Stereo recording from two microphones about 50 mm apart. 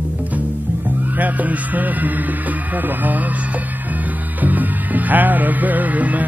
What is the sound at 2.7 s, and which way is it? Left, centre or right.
Speech, right.